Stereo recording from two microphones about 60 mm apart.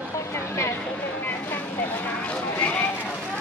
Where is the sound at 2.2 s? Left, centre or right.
Left.